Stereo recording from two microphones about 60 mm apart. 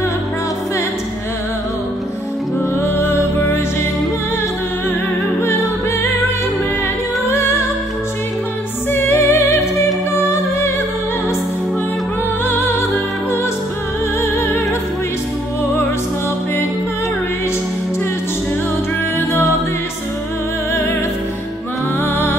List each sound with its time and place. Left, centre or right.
2.7 s music: left
9.1 s music: left
22.0 s music: left